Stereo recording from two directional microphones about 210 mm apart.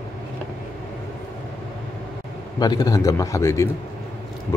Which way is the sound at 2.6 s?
20° left (ahead or behind).